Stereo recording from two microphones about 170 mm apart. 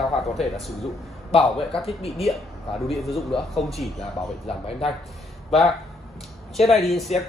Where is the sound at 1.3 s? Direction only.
35° left (ahead or behind).